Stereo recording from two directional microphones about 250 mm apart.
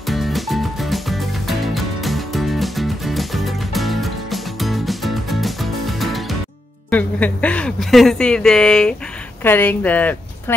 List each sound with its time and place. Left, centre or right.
0.0 s music: centre
6.9 s a woman's voice: centre